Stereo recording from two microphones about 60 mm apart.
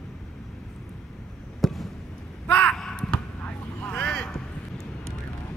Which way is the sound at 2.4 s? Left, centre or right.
Left.